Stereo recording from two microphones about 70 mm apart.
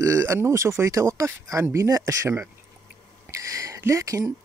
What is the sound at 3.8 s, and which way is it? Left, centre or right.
Speech, right.